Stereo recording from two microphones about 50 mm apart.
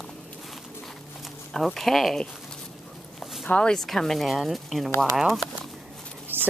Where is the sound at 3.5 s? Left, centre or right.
Left.